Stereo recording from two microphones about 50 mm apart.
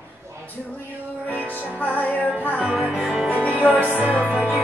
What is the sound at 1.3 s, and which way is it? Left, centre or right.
Music, right.